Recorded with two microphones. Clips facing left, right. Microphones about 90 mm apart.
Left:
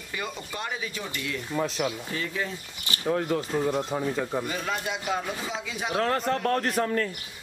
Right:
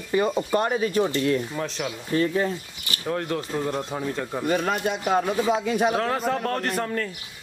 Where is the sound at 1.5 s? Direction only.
5° left (ahead or behind).